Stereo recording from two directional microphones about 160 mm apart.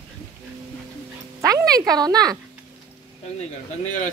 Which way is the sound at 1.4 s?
20° right (ahead or behind).